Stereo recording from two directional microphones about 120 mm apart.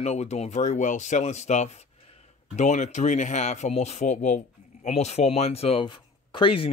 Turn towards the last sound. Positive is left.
turn(degrees=50)  # may be behind; listen again after turning